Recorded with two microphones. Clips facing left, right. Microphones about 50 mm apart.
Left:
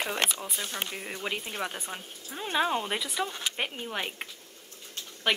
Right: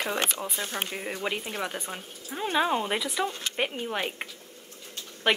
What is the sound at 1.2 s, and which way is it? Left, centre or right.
Speech, centre.